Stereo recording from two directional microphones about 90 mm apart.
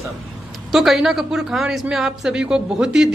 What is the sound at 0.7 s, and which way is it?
Speech, 5° right (ahead or behind).